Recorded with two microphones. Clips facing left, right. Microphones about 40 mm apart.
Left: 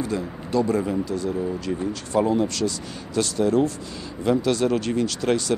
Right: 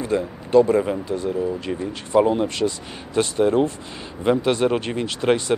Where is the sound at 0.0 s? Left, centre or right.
Right.